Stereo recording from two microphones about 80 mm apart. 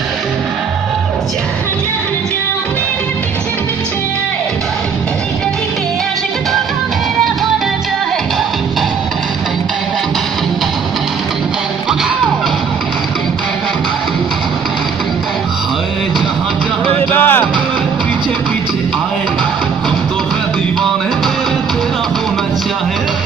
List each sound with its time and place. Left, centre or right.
17.1 s music: left